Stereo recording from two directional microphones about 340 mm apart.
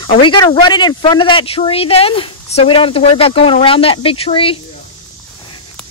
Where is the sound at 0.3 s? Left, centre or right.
Centre.